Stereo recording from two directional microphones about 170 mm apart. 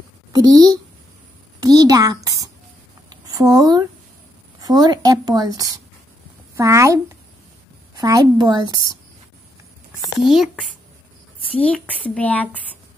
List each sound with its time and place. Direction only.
0.3 s a woman's voice: 20° right (ahead or behind)
3.1 s a sound: 20° right (ahead or behind)
4.6 s a woman's voice: 25° right (ahead or behind)
8.0 s a woman's voice: 25° right (ahead or behind)
10.3 s speech: centre (ahead or behind)